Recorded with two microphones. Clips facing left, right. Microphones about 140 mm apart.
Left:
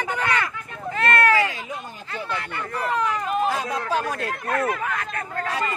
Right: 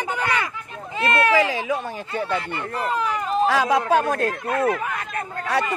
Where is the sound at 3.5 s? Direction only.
90° right; by 4.0 s 70° right (ahead or behind).